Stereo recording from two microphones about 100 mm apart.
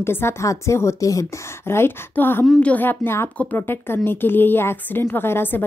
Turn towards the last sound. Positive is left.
turn(degrees=20)  # may be behind; listen again after turning